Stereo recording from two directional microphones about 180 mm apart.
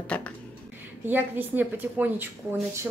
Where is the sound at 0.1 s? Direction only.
10° left (ahead or behind).